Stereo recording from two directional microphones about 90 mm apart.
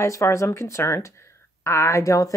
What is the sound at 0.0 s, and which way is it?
A woman's voice, 35° left (ahead or behind).